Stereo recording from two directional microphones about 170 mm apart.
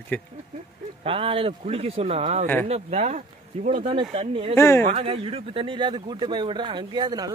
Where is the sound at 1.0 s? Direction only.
35° right (ahead or behind).